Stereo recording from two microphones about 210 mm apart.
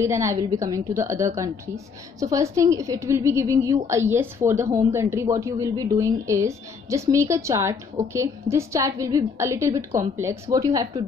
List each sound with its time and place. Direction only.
0.0 s a woman's voice: 15° right (ahead or behind)